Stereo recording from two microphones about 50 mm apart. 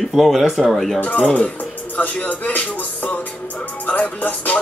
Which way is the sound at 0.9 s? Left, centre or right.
Left.